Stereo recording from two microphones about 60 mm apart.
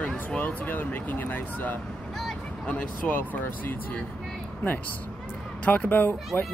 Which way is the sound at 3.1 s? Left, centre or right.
Left.